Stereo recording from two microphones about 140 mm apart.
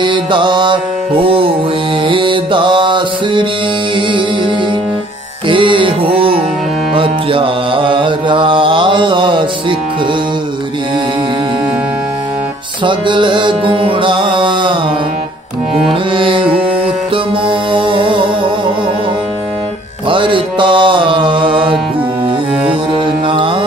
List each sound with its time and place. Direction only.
0.0 s music: 35° right (ahead or behind)
5.5 s music: 35° right (ahead or behind)
12.8 s music: 35° right (ahead or behind)
15.9 s music: 40° right (ahead or behind)
20.1 s mantra: 35° right (ahead or behind)
23.2 s mantra: 35° right (ahead or behind)